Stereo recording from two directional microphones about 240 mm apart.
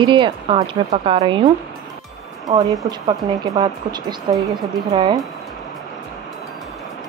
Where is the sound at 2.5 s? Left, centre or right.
Centre.